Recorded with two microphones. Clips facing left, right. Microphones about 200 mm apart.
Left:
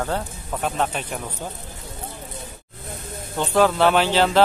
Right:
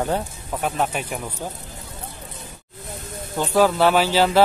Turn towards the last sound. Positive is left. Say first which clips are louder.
# right 1 dB
turn(degrees=-5)  # may be behind; listen again after turning